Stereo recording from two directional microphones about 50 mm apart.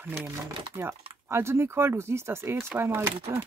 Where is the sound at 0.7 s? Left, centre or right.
Right.